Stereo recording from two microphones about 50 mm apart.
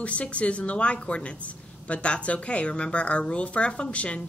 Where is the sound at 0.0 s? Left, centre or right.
Left.